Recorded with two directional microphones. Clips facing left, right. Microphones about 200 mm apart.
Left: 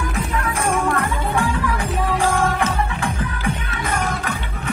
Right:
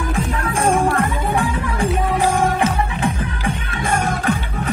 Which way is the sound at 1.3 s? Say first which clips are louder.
Even; 20° right (ahead or behind).